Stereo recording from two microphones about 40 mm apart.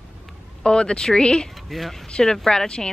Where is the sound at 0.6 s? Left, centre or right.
Left.